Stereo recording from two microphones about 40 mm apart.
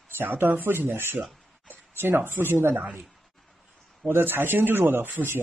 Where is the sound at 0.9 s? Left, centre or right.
Right.